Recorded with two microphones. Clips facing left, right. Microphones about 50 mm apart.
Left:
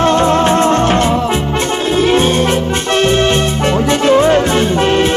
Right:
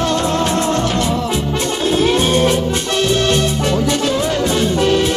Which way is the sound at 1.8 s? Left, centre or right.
Centre.